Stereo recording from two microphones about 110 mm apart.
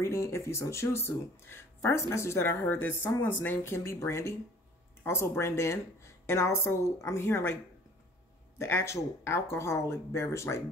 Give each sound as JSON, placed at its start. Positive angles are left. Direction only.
{"t": 0.0, "sound": "speech", "side_deg": 25}
{"t": 8.5, "sound": "speech", "side_deg": 25}